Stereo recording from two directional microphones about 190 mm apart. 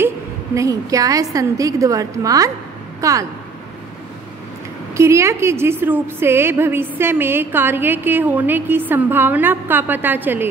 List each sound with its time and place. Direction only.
0.6 s a woman's voice: 15° right (ahead or behind)
4.9 s a woman's voice: 15° right (ahead or behind)